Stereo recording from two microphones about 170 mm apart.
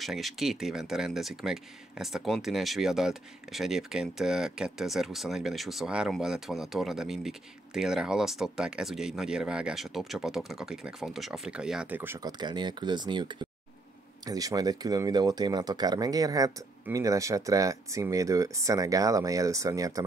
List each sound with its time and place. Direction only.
0.0 s speech: centre (ahead or behind)
12.2 s speech: 25° right (ahead or behind)